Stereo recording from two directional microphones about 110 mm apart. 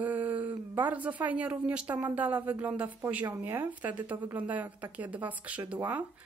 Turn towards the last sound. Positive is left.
turn(degrees=-15)  # may be behind; listen again after turning